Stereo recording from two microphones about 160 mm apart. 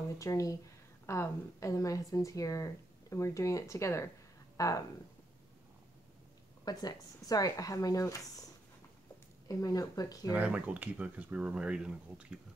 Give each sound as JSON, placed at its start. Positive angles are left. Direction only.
{"t": 0.2, "sound": "a woman's voice", "side_deg": 20}
{"t": 6.6, "sound": "a woman's voice", "side_deg": 25}
{"t": 9.5, "sound": "a woman's voice", "side_deg": 20}
{"t": 10.3, "sound": "speech", "side_deg": -10}